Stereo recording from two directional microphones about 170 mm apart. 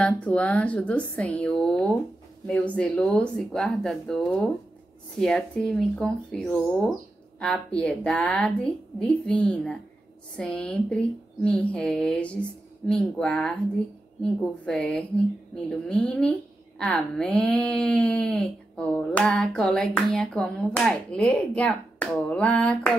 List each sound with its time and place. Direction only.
0.0 s a woman's voice: 5° left (ahead or behind)